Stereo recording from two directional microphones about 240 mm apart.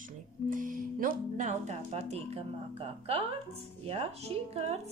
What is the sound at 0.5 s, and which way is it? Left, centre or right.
Speech, right.